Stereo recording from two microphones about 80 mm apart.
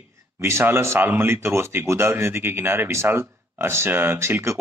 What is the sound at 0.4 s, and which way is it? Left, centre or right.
Speech, right.